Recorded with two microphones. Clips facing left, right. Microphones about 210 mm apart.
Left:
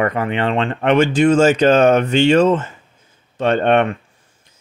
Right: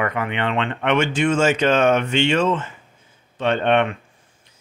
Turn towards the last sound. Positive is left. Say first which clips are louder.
# left 4 dB
turn(degrees=45)  # may be behind; listen again after turning